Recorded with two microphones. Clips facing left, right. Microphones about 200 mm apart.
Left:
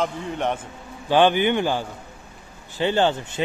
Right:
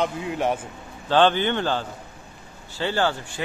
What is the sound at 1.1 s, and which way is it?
A man's voice, 15° left (ahead or behind).